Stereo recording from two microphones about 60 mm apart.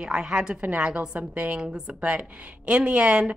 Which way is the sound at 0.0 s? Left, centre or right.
Centre.